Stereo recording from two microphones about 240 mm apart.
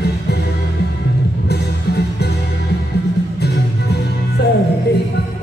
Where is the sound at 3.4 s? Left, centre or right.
Left.